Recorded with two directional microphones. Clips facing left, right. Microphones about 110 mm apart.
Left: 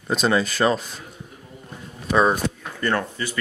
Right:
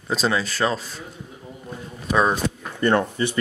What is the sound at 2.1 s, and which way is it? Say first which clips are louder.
Speech: left 1 dB; 5° left (ahead or behind).